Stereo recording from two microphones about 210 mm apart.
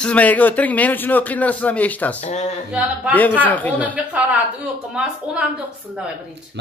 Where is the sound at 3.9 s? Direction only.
5° right (ahead or behind).